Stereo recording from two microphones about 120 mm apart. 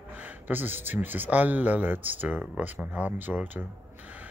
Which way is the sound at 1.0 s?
15° right (ahead or behind).